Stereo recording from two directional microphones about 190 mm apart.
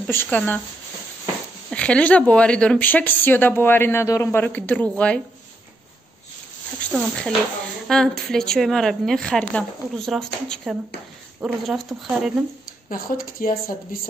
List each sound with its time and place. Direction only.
0.0 s speech: 10° left (ahead or behind)
1.7 s speech: 5° left (ahead or behind)
6.8 s speech: 5° left (ahead or behind)
12.9 s speech: 50° left (ahead or behind)